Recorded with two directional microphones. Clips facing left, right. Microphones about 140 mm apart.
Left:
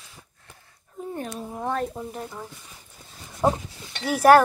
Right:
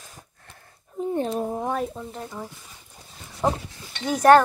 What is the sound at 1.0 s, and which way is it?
Speech, 20° right (ahead or behind).